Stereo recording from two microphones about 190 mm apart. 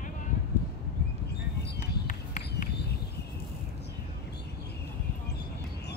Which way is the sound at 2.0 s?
40° left (ahead or behind).